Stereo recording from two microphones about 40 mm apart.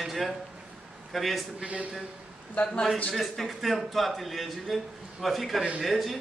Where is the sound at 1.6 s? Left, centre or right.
Right.